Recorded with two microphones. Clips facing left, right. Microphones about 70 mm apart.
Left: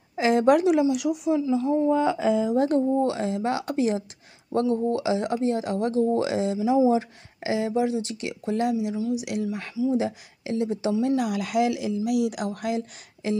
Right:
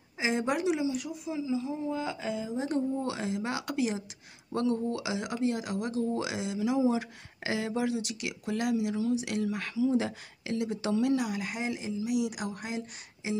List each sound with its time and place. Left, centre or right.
0.2 s speech: left
0.9 s speech: left
1.4 s speech: left
2.5 s speech: left
3.0 s speech: left
4.6 s speech: left
6.9 s speech: left
8.9 s speech: centre
11.2 s speech: left